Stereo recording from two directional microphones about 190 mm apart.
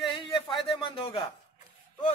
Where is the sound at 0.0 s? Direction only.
25° left (ahead or behind).